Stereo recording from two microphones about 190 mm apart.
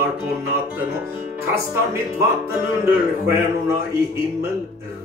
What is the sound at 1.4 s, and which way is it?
Speech, 15° right (ahead or behind).